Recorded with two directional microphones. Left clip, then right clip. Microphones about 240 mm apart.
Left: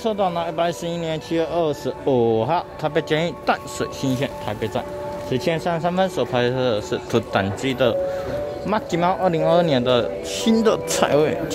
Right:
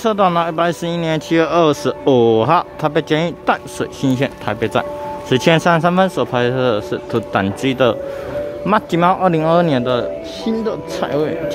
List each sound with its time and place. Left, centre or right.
0.0 s a man's voice: right; by 10.0 s centre
10.4 s speech: centre